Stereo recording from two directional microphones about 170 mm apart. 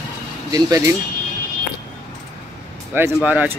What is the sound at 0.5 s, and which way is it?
Speech, 20° right (ahead or behind).